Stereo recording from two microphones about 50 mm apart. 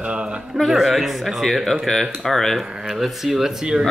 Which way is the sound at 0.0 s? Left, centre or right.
Centre.